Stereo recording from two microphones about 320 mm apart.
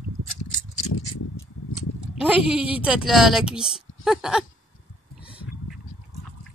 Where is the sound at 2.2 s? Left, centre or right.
Centre.